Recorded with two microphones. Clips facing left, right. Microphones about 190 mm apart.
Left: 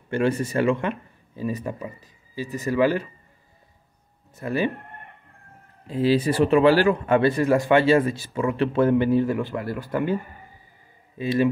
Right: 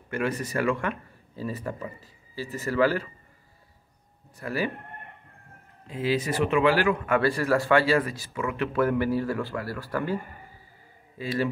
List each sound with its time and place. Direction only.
0.1 s speech: 30° left (ahead or behind)
4.4 s speech: 25° left (ahead or behind)
5.9 s speech: 30° left (ahead or behind)